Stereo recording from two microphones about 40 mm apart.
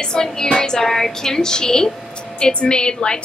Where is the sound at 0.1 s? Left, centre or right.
Centre.